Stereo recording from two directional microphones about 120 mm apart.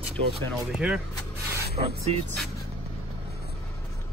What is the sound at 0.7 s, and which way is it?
Speech, 5° right (ahead or behind).